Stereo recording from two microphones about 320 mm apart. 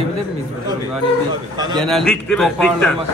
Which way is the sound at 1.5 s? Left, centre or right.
Centre.